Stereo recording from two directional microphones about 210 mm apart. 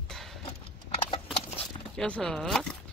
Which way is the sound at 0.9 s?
25° left (ahead or behind).